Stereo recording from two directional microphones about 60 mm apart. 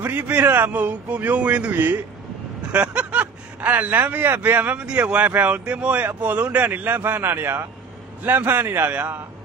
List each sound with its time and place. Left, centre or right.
0.0 s a man's voice: right
2.7 s a man's voice: centre